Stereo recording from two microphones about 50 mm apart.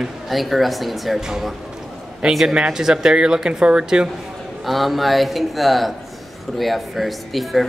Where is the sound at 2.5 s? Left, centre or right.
Centre.